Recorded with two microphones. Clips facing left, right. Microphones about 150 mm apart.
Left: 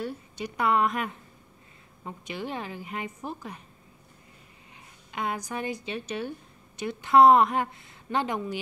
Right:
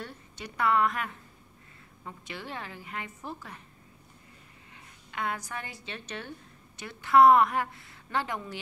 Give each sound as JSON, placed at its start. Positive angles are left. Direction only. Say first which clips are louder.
{"t": 0.0, "sound": "a woman's voice", "louder": "left 8 dB", "side_deg": 15}
{"t": 5.1, "sound": "a woman's voice", "louder": "left 3 dB", "side_deg": 20}